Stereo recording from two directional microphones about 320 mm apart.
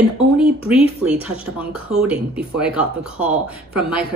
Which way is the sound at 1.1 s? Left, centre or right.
Centre.